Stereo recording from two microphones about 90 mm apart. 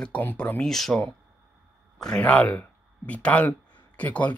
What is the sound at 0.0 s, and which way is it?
Speech, 15° left (ahead or behind).